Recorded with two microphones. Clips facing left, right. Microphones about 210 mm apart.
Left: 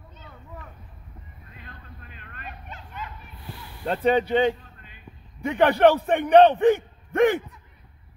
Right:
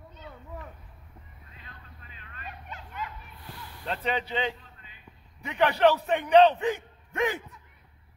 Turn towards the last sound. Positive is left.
turn(degrees=55)  # may be behind; listen again after turning